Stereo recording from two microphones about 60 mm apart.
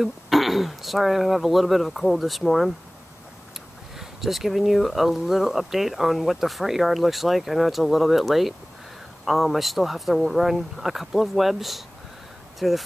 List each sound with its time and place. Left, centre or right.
0.0 s speech: centre
3.9 s speech: centre